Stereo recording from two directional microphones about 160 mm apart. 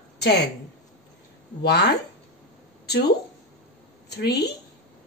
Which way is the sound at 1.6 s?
90° left.